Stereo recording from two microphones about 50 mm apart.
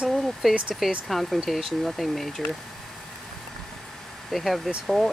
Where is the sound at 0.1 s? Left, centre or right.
Centre.